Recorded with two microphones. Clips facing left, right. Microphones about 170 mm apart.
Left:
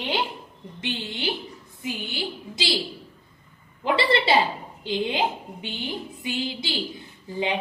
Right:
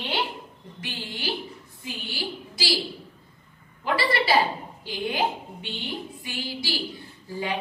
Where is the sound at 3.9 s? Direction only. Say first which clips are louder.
Left 2 dB; 25° left (ahead or behind).